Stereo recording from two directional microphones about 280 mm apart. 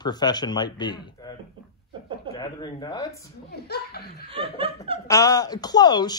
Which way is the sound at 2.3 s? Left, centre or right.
Centre.